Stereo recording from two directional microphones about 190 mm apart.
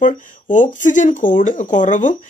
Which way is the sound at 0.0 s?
40° left (ahead or behind).